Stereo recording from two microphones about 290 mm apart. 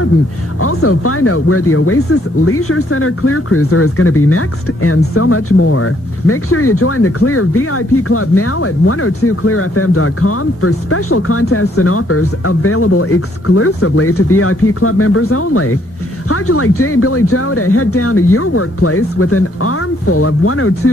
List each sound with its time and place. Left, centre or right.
0.6 s speech: left